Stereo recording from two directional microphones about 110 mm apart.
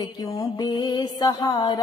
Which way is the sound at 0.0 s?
30° left (ahead or behind).